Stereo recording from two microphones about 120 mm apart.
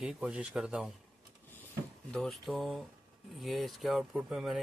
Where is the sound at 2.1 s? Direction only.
5° left (ahead or behind).